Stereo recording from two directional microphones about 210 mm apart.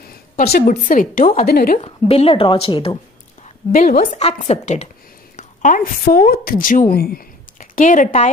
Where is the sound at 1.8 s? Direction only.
30° left (ahead or behind).